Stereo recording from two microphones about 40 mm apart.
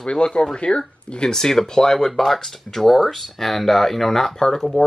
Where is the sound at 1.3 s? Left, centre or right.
Centre.